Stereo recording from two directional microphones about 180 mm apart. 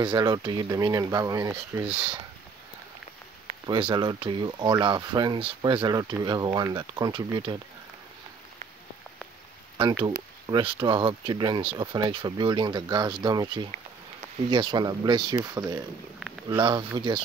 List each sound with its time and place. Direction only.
0.0 s speech: 25° right (ahead or behind)
3.6 s speech: 25° right (ahead or behind)
10.5 s speech: 25° right (ahead or behind)